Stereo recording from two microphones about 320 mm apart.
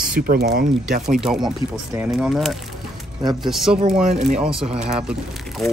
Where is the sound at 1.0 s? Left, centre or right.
Centre.